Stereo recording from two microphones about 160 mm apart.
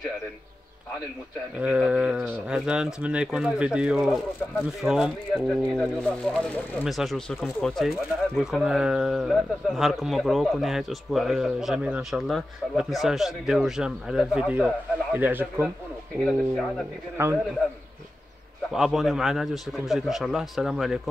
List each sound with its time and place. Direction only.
1.6 s speech: 5° right (ahead or behind)
16.3 s speech: 5° left (ahead or behind)
17.2 s speech: 15° right (ahead or behind)
18.7 s speech: centre (ahead or behind)